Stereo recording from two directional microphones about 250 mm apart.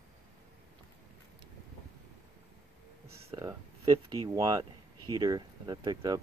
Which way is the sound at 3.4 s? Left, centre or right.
Centre.